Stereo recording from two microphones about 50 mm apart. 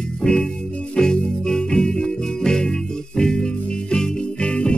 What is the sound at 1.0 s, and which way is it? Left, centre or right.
Music, centre.